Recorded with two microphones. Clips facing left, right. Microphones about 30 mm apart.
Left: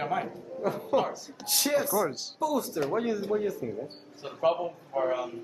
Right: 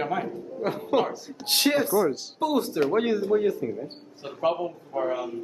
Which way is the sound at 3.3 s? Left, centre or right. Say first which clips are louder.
Right 6 dB; right.